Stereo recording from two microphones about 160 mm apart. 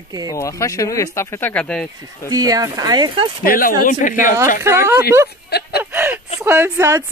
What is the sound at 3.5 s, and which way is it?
Speech, 60° left (ahead or behind).